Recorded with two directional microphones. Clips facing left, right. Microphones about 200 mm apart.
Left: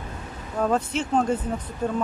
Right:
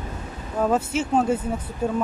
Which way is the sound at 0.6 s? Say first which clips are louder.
Right 2 dB; 5° right (ahead or behind).